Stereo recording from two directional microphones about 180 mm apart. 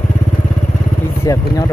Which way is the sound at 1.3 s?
20° left (ahead or behind).